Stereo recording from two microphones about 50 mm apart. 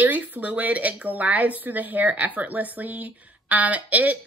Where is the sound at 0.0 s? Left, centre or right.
Right.